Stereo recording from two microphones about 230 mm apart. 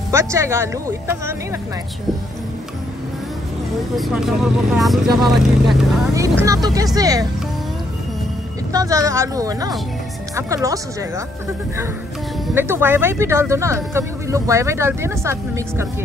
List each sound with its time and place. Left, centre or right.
0.1 s speech: centre
3.9 s speech: centre
6.1 s speech: centre
8.7 s speech: centre
12.5 s speech: centre